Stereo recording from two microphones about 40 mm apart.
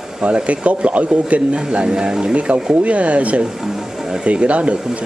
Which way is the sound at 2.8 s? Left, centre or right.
Right.